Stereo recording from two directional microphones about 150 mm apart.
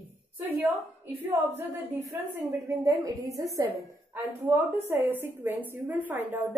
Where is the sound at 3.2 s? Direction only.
20° right (ahead or behind).